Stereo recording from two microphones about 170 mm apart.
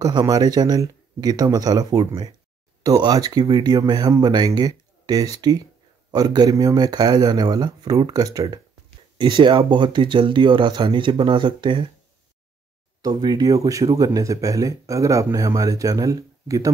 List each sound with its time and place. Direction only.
0.0 s speech: 20° right (ahead or behind)
13.0 s speech: 25° right (ahead or behind)